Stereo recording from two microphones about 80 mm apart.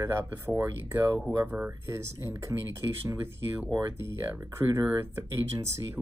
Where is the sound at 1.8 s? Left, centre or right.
Right.